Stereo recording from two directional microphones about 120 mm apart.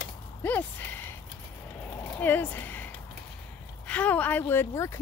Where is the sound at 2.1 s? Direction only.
15° left (ahead or behind).